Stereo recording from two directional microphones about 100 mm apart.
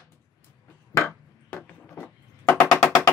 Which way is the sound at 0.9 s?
30° left (ahead or behind).